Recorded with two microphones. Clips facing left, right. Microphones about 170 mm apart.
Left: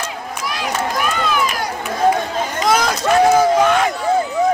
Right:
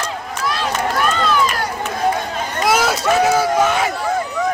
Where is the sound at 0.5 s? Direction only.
15° left (ahead or behind).